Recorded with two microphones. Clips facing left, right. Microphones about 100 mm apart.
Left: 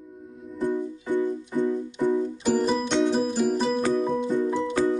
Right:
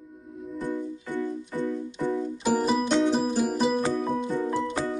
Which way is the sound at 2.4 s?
5° right (ahead or behind).